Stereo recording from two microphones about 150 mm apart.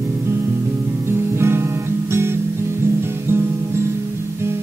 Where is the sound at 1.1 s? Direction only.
15° right (ahead or behind).